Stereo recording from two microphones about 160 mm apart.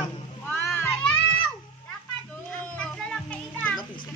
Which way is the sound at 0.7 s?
10° left (ahead or behind).